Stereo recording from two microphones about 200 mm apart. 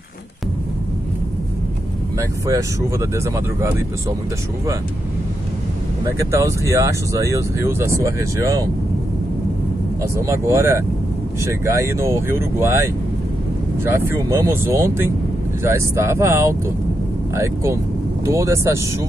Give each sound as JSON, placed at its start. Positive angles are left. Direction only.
{"t": 2.1, "sound": "speech", "side_deg": -15}
{"t": 6.1, "sound": "speech", "side_deg": -15}
{"t": 10.1, "sound": "speech", "side_deg": -15}
{"t": 18.2, "sound": "speech", "side_deg": -15}